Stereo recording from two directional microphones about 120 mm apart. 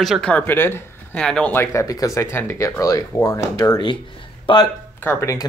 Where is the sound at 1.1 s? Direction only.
5° left (ahead or behind); by 4.0 s 35° left (ahead or behind).